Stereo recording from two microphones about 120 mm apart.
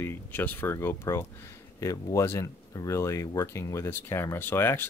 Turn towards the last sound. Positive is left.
turn(degrees=20)  # may be behind; listen again after turning